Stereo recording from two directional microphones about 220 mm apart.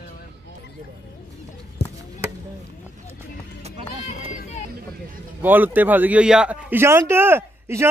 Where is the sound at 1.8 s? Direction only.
50° left (ahead or behind).